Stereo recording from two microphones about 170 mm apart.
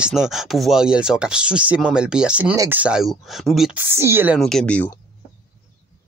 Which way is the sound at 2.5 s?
20° right (ahead or behind).